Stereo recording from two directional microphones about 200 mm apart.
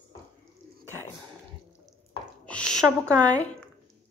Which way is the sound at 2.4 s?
5° left (ahead or behind).